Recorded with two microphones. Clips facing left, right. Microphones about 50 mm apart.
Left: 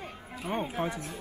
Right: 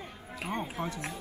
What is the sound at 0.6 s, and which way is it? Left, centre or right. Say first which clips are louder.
Speech: left 4 dB; left.